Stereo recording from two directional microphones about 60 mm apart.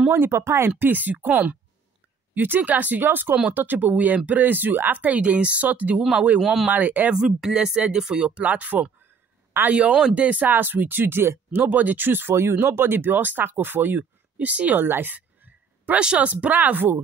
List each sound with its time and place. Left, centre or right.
0.1 s speech: right
0.7 s speech: right
6.4 s speech: centre
6.7 s speech: right
7.1 s speech: centre; by 12.4 s right
12.4 s speech: right